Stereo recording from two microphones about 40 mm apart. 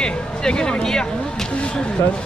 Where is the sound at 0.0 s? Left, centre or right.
Left.